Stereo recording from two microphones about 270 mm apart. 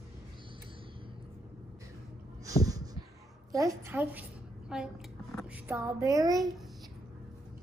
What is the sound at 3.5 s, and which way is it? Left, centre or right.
Speech, centre.